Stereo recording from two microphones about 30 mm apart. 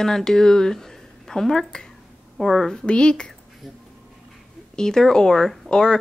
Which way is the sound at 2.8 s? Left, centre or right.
Left.